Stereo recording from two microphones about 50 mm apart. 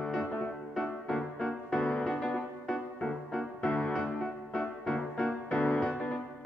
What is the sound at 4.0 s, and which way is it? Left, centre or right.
Music, centre.